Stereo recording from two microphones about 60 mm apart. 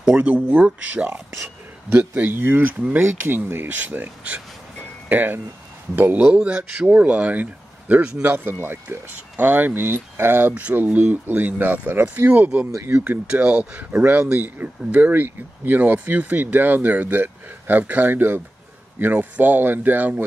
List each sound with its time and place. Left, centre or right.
0.0 s speech: centre; by 6.2 s right
6.2 s speech: centre; by 10.5 s right
10.5 s speech: right
12.9 s speech: centre